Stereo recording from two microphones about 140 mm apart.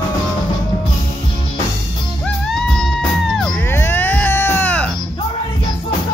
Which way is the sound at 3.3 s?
15° left (ahead or behind).